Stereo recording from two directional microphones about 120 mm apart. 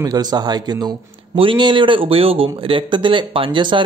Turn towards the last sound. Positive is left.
turn(degrees=-40)  # may be behind; listen again after turning